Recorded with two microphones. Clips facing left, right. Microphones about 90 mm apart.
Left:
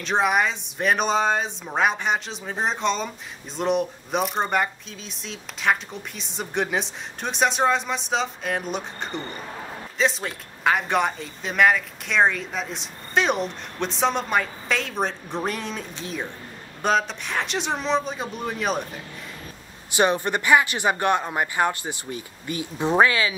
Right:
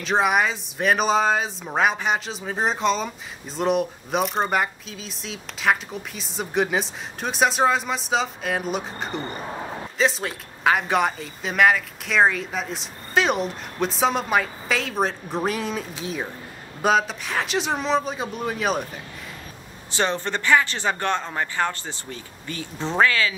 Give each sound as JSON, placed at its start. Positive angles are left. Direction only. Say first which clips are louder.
{"t": 0.0, "sound": "speech", "louder": "right 1 dB", "side_deg": 0}
{"t": 19.9, "sound": "speech", "louder": "left 3 dB", "side_deg": 15}